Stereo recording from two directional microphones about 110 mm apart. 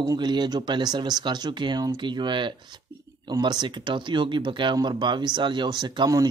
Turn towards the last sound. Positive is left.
turn(degrees=-40)  # may be behind; listen again after turning